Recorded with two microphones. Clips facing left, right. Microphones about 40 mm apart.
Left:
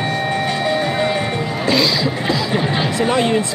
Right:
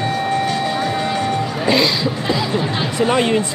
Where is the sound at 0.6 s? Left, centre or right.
Centre.